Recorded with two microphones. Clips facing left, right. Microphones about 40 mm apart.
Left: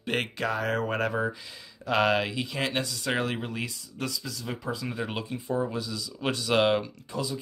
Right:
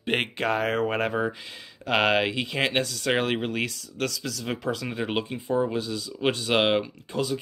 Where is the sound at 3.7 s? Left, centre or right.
Right.